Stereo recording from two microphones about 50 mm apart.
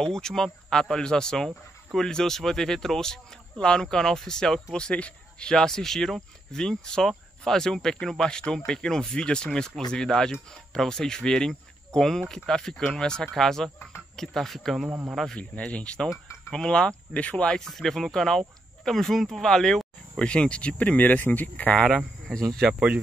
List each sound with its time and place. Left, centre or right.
0.0 s speech: centre
15.3 s speech: left
17.6 s speech: centre; by 21.7 s left
21.8 s speech: centre
22.7 s speech: right